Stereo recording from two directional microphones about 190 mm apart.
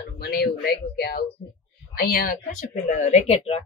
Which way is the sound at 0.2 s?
55° left (ahead or behind).